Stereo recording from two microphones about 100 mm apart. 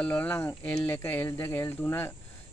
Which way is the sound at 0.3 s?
25° left (ahead or behind).